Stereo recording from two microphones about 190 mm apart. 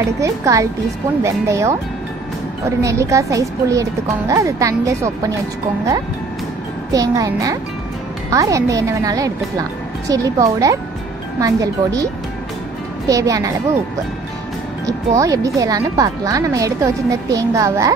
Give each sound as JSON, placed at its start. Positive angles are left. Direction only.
{"t": 0.2, "sound": "speech", "side_deg": -15}
{"t": 2.8, "sound": "speech", "side_deg": -15}
{"t": 6.9, "sound": "speech", "side_deg": -20}
{"t": 14.9, "sound": "speech", "side_deg": -15}